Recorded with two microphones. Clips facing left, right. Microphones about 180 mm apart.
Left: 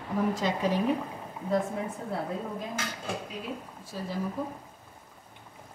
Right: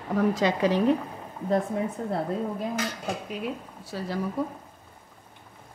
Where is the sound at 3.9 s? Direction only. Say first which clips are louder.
Right 3 dB; 85° right.